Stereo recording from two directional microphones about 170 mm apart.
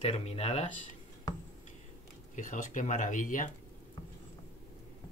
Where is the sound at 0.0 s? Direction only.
35° left (ahead or behind).